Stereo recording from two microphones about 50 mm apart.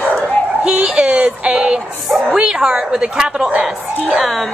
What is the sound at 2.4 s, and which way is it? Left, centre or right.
A woman's voice, centre.